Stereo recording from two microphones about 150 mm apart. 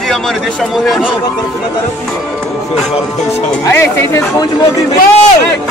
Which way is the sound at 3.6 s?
20° left (ahead or behind).